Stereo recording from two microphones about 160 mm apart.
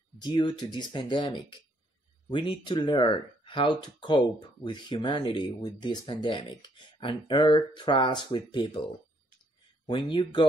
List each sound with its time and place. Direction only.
0.2 s speech: 30° left (ahead or behind)
9.8 s speech: 30° left (ahead or behind)